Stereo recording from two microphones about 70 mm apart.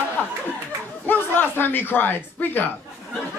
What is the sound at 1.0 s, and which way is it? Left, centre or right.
Speech, left.